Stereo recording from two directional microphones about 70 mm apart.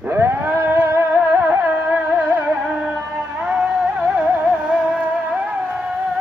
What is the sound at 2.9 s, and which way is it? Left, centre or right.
Music, centre.